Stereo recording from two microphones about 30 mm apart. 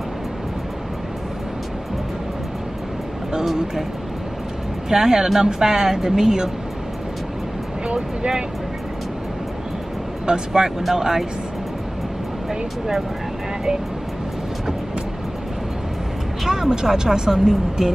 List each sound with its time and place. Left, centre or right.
4.8 s speech: centre
10.2 s speech: right
16.4 s speech: centre